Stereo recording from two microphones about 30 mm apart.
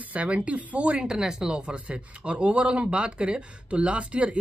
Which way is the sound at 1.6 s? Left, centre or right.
Right.